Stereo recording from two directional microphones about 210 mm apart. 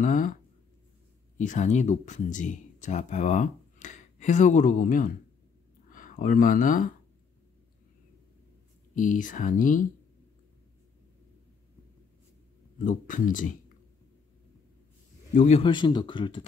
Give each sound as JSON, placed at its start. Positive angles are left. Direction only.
{"t": 0.0, "sound": "speech", "side_deg": 40}
{"t": 1.4, "sound": "speech", "side_deg": 35}
{"t": 8.9, "sound": "speech", "side_deg": 40}
{"t": 12.7, "sound": "speech", "side_deg": 40}
{"t": 15.3, "sound": "speech", "side_deg": 30}